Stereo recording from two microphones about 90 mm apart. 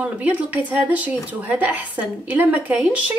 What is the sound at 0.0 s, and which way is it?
Speech, 15° right (ahead or behind).